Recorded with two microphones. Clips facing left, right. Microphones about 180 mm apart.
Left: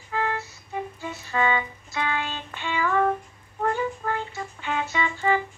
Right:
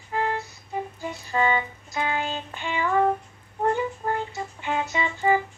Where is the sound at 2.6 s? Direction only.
20° right (ahead or behind).